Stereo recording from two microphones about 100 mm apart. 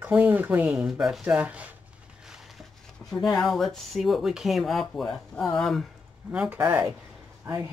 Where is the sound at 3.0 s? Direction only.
20° left (ahead or behind).